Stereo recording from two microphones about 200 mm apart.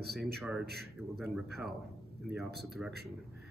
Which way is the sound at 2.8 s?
5° right (ahead or behind).